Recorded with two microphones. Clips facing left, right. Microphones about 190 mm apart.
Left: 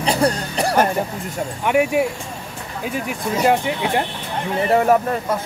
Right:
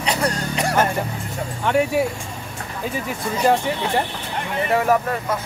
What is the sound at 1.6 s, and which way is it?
Speech, 10° left (ahead or behind).